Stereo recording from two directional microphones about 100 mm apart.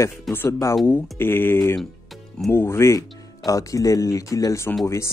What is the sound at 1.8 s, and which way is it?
Music, centre (ahead or behind).